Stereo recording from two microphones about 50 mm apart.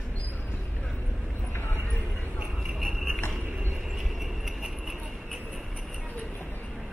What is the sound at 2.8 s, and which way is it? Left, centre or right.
Clip-clop, centre.